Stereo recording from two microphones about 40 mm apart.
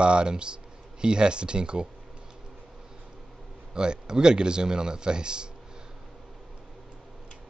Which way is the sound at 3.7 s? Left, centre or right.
Centre.